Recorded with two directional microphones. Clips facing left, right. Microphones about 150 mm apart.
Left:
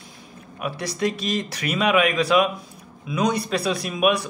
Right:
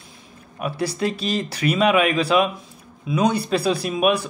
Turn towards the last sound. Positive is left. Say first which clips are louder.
# right 1 dB
turn(degrees=-30)  # may be behind; listen again after turning